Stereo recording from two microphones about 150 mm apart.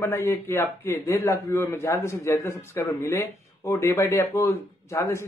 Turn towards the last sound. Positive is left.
turn(degrees=20)  # may be behind; listen again after turning